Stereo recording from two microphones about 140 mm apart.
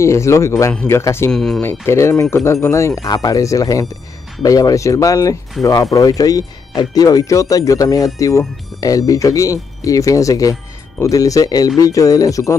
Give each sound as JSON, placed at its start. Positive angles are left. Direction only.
{"t": 0.0, "sound": "speech", "side_deg": 20}
{"t": 1.3, "sound": "speech", "side_deg": 5}
{"t": 1.6, "sound": "speech", "side_deg": 15}